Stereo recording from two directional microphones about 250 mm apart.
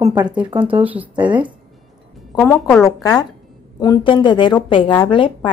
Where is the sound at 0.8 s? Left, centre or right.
Centre.